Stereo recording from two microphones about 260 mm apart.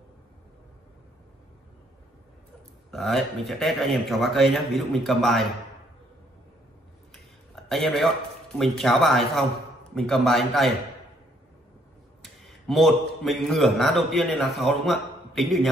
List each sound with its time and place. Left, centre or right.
2.9 s speech: centre
7.6 s speech: centre
12.2 s a man's voice: centre